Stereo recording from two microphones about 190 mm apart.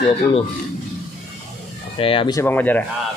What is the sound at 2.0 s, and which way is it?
Speech, 30° left (ahead or behind).